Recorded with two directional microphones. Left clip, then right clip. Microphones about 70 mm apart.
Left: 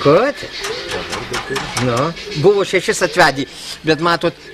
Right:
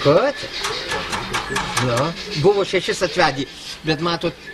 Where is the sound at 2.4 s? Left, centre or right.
Left.